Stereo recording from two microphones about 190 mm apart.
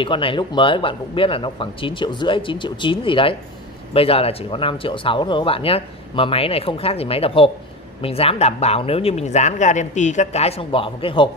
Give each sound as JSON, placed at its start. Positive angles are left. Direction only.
{"t": 0.0, "sound": "speech", "side_deg": 25}